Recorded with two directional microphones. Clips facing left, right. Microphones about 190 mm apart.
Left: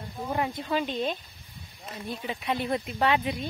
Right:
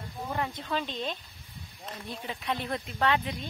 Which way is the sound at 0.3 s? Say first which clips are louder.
Left 4 dB; 10° left (ahead or behind).